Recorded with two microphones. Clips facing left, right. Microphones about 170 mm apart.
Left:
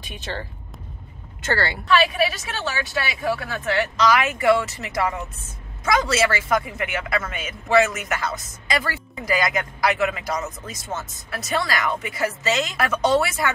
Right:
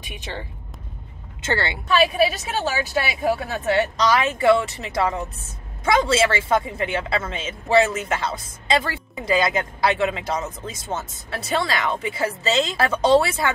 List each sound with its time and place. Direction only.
0.1 s speech: 15° right (ahead or behind)
2.6 s speech: 35° right (ahead or behind)